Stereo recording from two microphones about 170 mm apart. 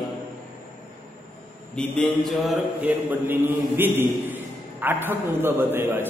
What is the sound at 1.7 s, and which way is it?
Mantra, 5° left (ahead or behind).